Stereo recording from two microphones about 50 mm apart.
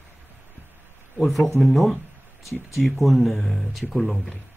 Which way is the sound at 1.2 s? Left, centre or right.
Centre.